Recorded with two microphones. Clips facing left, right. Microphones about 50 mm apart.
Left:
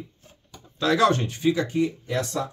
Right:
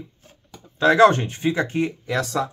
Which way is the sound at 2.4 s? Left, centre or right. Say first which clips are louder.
Right 4 dB; right.